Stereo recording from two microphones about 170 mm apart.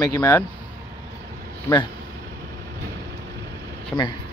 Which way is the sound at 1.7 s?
15° left (ahead or behind).